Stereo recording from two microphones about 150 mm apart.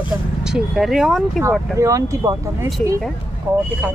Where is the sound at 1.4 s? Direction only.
20° right (ahead or behind).